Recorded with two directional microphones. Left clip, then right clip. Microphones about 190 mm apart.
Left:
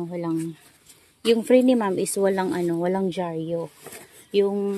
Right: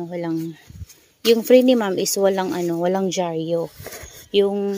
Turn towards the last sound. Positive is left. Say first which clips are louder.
# right 3 dB
turn(degrees=-20)  # may be behind; listen again after turning